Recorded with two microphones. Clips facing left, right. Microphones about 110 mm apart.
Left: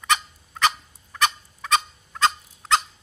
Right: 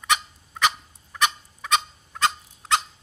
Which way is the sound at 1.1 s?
15° right (ahead or behind).